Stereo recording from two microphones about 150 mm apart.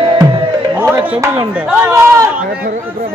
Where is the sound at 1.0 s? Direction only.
20° right (ahead or behind).